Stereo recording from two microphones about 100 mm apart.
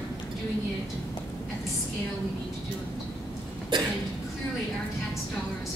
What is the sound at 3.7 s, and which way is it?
Speech, 55° right (ahead or behind).